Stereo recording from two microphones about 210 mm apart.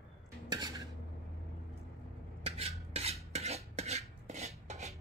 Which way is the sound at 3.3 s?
30° right (ahead or behind).